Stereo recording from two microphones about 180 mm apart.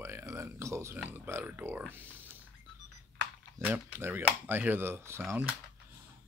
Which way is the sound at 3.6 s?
10° right (ahead or behind).